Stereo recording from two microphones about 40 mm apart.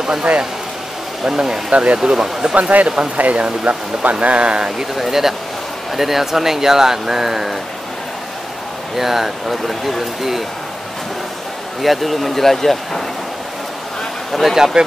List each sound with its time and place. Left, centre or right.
1.2 s speech: centre
1.7 s speech: right
2.5 s speech: right
4.6 s speech: centre
8.9 s speech: centre
11.8 s speech: centre
14.3 s speech: centre